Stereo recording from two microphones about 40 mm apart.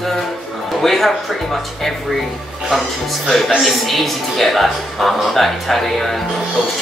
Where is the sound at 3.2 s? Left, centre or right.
Centre.